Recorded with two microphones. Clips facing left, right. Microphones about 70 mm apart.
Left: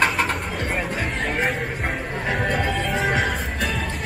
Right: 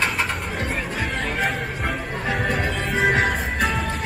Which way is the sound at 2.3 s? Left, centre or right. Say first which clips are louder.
Even; centre.